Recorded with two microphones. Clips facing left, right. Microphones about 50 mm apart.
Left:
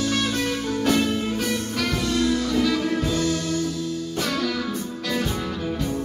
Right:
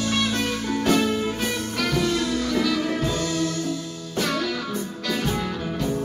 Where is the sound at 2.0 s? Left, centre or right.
Centre.